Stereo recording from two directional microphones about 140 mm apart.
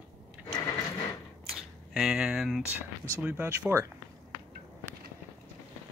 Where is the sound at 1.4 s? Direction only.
Centre (ahead or behind).